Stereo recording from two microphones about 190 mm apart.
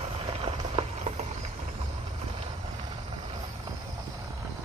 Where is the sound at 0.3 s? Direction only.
30° right (ahead or behind).